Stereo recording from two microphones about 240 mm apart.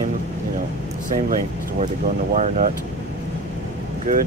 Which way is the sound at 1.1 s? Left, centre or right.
Right.